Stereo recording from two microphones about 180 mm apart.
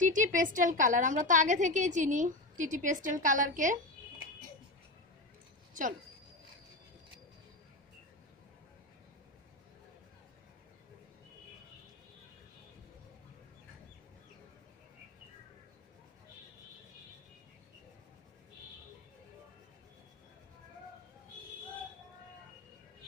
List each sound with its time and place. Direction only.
0.0 s a woman's voice: 45° right (ahead or behind)